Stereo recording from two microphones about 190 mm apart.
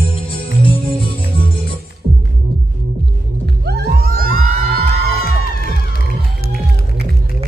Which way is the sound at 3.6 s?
55° right (ahead or behind).